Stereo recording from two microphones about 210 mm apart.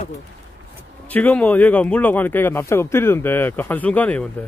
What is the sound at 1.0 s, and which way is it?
Speech, 5° left (ahead or behind).